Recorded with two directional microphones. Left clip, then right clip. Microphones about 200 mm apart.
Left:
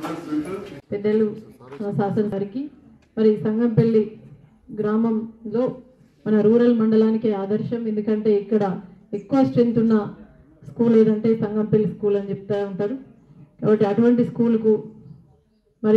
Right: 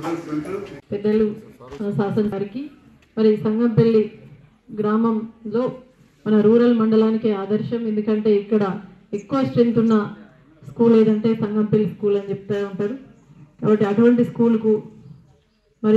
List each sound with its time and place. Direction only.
0.8 s speech: 30° right (ahead or behind)